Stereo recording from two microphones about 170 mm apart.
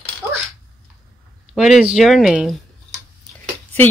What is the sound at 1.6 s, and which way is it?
Speech, 5° right (ahead or behind).